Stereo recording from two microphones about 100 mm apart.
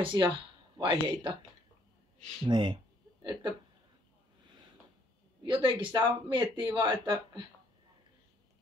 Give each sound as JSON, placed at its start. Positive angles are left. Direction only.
{"t": 0.0, "sound": "speech", "side_deg": -55}
{"t": 2.4, "sound": "speech", "side_deg": -50}
{"t": 5.4, "sound": "speech", "side_deg": -55}